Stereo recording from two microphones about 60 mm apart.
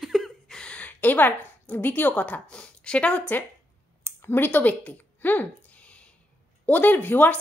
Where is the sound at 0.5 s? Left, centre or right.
Centre.